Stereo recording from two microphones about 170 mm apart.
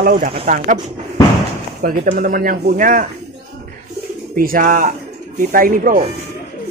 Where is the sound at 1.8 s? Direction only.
55° right (ahead or behind).